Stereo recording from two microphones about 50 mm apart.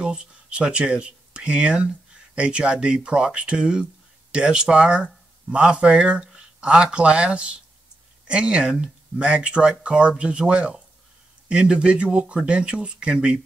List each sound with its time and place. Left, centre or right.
0.0 s speech: centre